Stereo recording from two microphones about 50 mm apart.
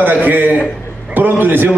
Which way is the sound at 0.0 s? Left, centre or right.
Right.